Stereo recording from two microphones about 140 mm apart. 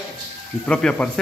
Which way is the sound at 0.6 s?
5° left (ahead or behind).